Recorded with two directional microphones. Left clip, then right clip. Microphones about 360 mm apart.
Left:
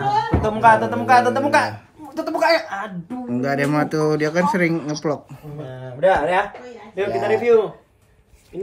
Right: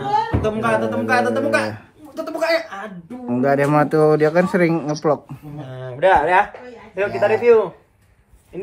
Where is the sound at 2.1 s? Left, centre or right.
Left.